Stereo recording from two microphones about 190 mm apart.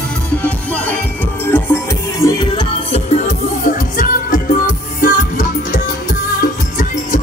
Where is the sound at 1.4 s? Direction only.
10° left (ahead or behind).